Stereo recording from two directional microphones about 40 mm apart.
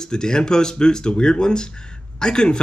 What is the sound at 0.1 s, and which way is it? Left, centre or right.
A man's voice, centre.